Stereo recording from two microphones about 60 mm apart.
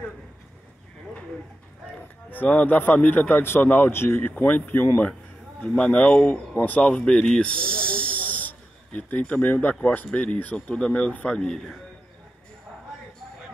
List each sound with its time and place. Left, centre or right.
2.3 s a man's voice: left
5.8 s a man's voice: centre